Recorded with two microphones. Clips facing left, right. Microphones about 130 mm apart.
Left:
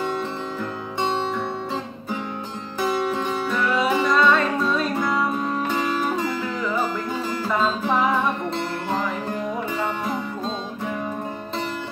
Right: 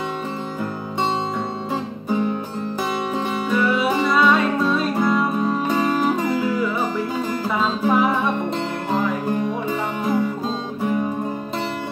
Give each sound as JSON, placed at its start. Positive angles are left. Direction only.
{"t": 2.9, "sound": "music", "side_deg": -5}
{"t": 7.8, "sound": "music", "side_deg": -10}